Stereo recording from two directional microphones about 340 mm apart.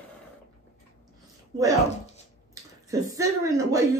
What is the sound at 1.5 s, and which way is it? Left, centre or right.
Speech, centre.